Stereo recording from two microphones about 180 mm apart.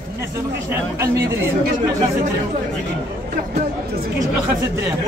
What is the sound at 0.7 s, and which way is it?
Speech, 15° right (ahead or behind).